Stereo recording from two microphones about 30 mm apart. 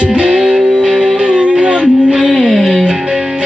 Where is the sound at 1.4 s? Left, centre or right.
Right.